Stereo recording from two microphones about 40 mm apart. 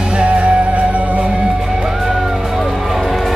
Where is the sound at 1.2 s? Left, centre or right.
Centre.